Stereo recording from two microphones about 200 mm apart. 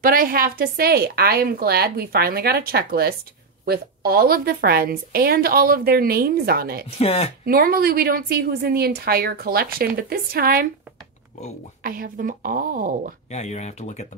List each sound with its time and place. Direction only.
0.0 s a woman's voice: 45° right (ahead or behind)
7.0 s speech: 30° left (ahead or behind)
7.4 s a woman's voice: 45° right (ahead or behind)
11.8 s a woman's voice: 45° right (ahead or behind)
13.3 s speech: 35° left (ahead or behind)